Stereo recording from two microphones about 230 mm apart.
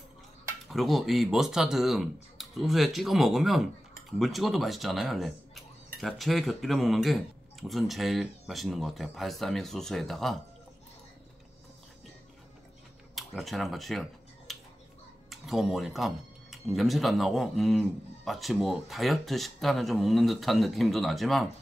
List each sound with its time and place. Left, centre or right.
0.7 s speech: centre
13.1 s speech: centre
14.5 s a sound: centre
15.2 s speech: centre